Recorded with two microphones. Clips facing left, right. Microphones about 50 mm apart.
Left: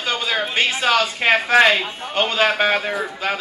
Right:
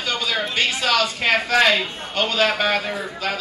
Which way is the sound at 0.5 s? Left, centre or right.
Left.